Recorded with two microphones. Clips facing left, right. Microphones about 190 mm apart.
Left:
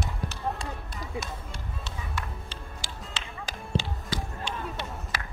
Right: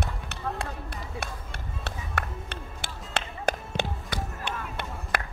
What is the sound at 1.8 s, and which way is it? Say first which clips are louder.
Music: right 4 dB; 60° right (ahead or behind).